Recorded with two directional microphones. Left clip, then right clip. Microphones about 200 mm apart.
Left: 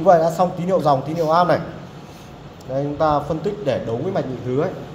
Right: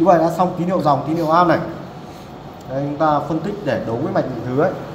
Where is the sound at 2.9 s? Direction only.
45° left (ahead or behind).